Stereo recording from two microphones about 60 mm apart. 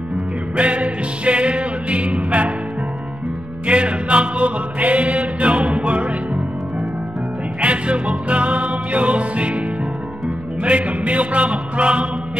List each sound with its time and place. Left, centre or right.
0.6 s music: right
3.6 s music: centre
7.6 s music: right
10.6 s music: right